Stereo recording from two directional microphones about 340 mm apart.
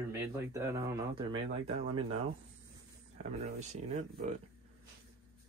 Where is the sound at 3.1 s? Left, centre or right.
Centre.